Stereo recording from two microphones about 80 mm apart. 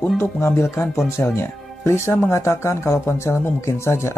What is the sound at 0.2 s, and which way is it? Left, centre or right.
Speech, left.